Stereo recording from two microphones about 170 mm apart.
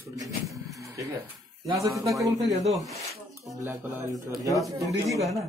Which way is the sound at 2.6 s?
Centre (ahead or behind).